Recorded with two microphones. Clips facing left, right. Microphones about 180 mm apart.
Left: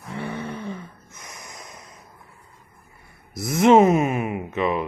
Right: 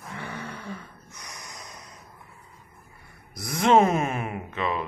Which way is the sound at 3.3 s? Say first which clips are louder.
Left 5 dB; 25° left (ahead or behind).